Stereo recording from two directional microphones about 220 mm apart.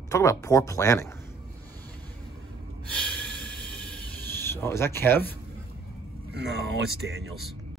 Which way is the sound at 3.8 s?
5° left (ahead or behind).